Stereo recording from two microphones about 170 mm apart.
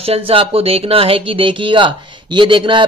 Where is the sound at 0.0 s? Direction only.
35° right (ahead or behind).